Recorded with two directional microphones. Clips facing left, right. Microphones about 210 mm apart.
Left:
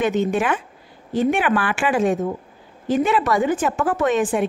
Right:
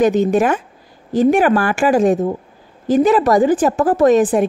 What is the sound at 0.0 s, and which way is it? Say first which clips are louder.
Speech: right 6 dB; 40° right (ahead or behind).